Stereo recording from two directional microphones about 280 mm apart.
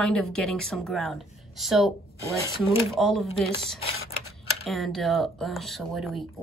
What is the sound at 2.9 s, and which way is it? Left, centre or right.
Speech, centre.